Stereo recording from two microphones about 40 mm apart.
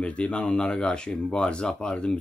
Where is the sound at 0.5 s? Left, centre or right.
Centre.